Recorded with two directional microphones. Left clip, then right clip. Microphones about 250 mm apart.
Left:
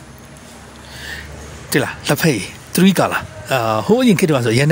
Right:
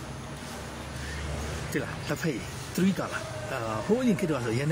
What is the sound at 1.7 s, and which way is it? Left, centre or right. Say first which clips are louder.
Speech: left 16 dB; left.